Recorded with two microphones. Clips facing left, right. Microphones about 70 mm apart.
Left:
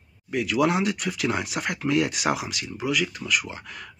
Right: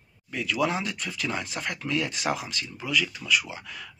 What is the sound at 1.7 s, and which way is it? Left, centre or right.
Speech, left.